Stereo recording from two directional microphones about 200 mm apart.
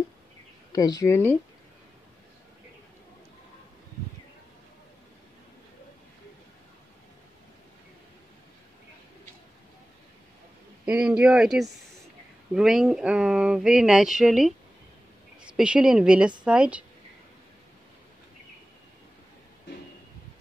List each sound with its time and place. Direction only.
0.7 s speech: 20° left (ahead or behind)
10.9 s speech: 5° right (ahead or behind)
15.5 s speech: 5° right (ahead or behind)